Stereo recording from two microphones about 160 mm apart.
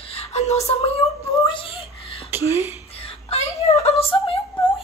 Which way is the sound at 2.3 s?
15° right (ahead or behind).